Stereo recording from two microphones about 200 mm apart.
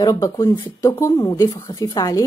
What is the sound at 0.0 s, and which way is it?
Speech, 15° left (ahead or behind).